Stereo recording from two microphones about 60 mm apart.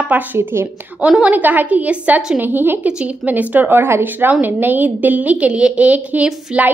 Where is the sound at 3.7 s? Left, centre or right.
Right.